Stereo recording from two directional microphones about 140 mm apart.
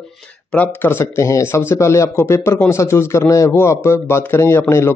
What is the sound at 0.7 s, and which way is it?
A man's voice, 15° left (ahead or behind).